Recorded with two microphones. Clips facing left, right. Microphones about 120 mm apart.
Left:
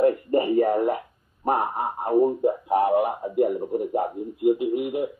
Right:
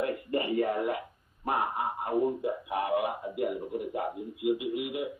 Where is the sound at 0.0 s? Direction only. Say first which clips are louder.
Left 10 dB; 40° left (ahead or behind).